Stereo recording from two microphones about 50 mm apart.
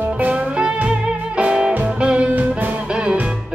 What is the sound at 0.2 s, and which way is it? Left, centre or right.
Music, right.